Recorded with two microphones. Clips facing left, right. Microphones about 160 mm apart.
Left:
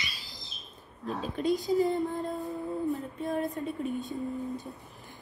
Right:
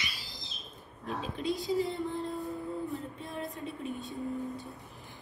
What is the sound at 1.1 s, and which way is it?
Speech, 40° left (ahead or behind).